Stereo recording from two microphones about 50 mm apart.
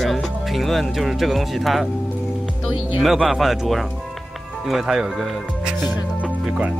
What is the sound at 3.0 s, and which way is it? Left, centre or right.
Speech, centre.